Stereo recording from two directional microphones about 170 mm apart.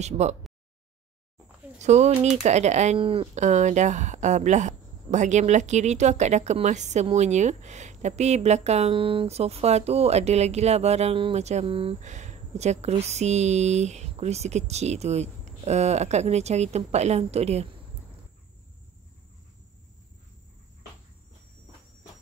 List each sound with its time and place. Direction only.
0.0 s speech: 40° right (ahead or behind)
1.8 s speech: 40° right (ahead or behind)